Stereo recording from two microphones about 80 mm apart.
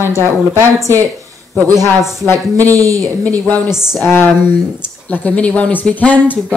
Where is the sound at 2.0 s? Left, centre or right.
Centre.